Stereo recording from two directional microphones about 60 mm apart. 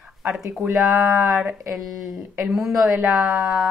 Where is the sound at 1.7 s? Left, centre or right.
Centre.